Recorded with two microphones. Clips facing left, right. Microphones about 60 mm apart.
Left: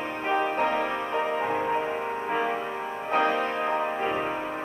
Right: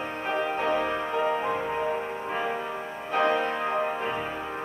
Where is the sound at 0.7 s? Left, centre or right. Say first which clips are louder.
Right 1 dB; left.